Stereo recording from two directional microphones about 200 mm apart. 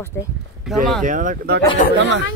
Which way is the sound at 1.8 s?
40° left (ahead or behind).